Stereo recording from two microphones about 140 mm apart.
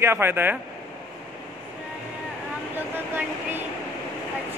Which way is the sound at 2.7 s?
15° right (ahead or behind).